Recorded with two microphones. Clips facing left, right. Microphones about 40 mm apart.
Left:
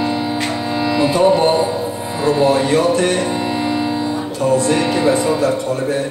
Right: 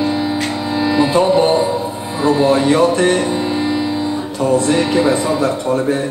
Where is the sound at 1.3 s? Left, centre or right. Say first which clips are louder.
Right 1 dB; left.